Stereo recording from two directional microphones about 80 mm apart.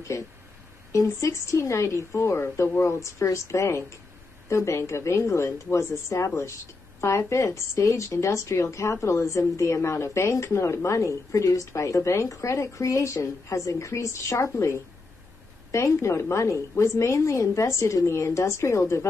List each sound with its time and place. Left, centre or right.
0.9 s speech: left